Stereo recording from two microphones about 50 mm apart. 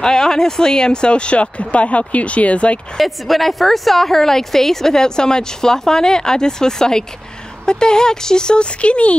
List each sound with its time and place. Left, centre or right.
0.0 s speech: centre
3.0 s a woman's voice: centre; by 9.1 s left